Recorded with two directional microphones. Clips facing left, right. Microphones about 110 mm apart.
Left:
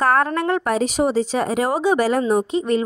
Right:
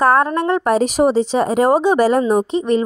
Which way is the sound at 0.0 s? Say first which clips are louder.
Right 4 dB; 25° right (ahead or behind).